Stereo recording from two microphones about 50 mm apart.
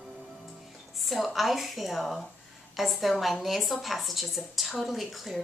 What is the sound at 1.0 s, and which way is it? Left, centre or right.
A woman's voice, centre.